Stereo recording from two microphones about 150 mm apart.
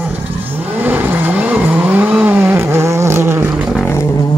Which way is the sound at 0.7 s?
10° right (ahead or behind).